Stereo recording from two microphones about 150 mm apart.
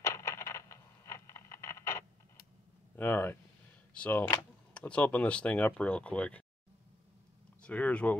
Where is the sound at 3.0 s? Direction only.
10° left (ahead or behind).